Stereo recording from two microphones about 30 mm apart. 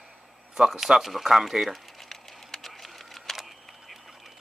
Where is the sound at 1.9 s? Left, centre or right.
Centre.